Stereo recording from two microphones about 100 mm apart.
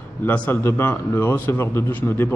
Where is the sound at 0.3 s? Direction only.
20° left (ahead or behind).